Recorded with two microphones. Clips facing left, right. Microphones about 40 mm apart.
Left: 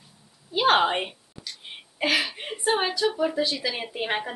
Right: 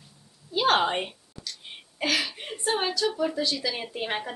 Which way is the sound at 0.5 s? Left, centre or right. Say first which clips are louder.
Left 2 dB; centre.